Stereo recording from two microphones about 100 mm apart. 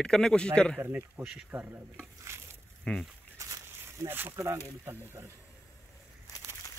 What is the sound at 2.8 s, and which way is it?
Speech, 5° left (ahead or behind).